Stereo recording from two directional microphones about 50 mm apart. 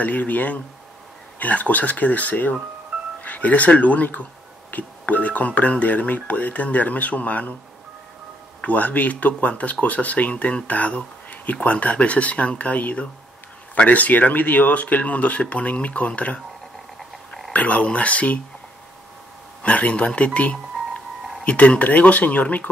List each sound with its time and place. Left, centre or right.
0.0 s speech: left
8.6 s speech: left
17.5 s speech: left
19.6 s speech: left